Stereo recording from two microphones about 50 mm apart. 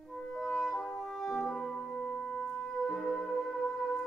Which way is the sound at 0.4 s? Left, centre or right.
Centre.